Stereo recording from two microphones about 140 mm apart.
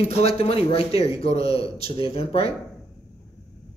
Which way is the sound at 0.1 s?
45° left (ahead or behind).